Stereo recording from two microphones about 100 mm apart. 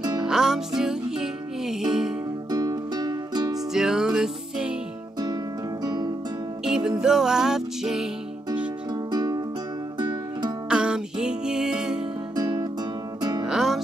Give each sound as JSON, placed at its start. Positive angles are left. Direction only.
{"t": 0.2, "sound": "music", "side_deg": -5}
{"t": 2.5, "sound": "music", "side_deg": -40}
{"t": 3.7, "sound": "music", "side_deg": -5}
{"t": 5.9, "sound": "music", "side_deg": -45}
{"t": 6.6, "sound": "music", "side_deg": -5}
{"t": 8.9, "sound": "music", "side_deg": -45}
{"t": 10.7, "sound": "music", "side_deg": -10}
{"t": 12.4, "sound": "music", "side_deg": -40}
{"t": 13.5, "sound": "music", "side_deg": -5}